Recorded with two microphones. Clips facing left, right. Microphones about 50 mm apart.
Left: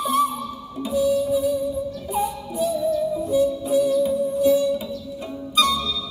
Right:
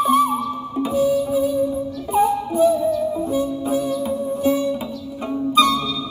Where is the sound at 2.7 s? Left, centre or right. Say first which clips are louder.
Right 2 dB; right.